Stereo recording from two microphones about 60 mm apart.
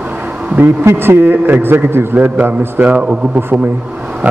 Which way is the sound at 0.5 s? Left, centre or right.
Right.